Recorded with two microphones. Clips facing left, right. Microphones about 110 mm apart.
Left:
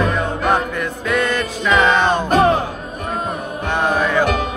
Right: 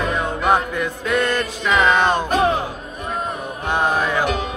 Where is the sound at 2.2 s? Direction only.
40° left (ahead or behind).